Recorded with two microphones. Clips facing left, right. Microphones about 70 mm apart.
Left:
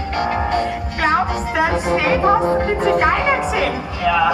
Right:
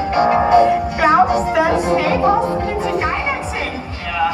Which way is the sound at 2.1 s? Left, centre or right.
Left.